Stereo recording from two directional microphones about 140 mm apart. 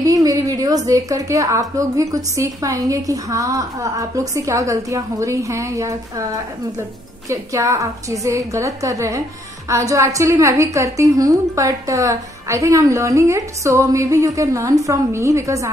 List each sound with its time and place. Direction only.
0.0 s a sound: 25° right (ahead or behind)
0.8 s a woman's voice: 25° right (ahead or behind)
7.2 s a woman's voice: 20° right (ahead or behind)